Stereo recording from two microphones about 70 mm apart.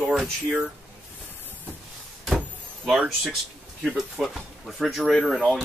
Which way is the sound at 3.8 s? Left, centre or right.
Centre.